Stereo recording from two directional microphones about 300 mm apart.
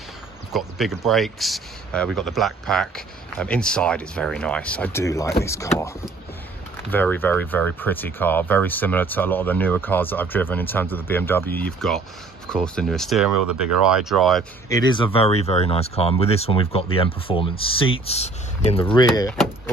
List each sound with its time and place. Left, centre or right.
0.5 s speech: centre
14.7 s speech: centre
19.3 s speech: centre